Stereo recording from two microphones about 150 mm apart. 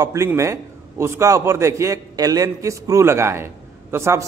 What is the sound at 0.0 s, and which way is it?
A man's voice, 20° right (ahead or behind).